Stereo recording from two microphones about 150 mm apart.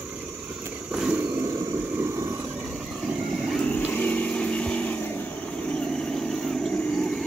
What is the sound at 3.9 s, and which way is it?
Vehicle, 10° left (ahead or behind).